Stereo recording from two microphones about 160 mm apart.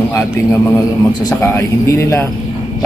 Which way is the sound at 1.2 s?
20° left (ahead or behind).